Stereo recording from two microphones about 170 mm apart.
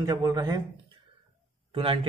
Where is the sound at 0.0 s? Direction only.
20° right (ahead or behind).